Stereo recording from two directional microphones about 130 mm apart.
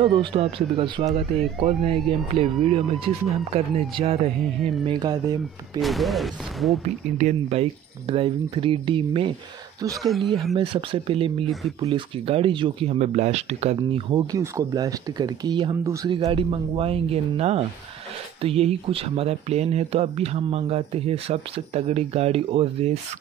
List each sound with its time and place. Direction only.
0.0 s speech: 40° right (ahead or behind)
4.8 s speech: 35° right (ahead or behind)
5.8 s speech: centre (ahead or behind)
7.2 s speech: 55° right (ahead or behind)
10.0 s speech: centre (ahead or behind)
10.6 s speech: 45° right (ahead or behind)
14.1 s speech: 25° right (ahead or behind)
15.8 s speech: 25° right (ahead or behind)
16.3 s speech: 45° right (ahead or behind)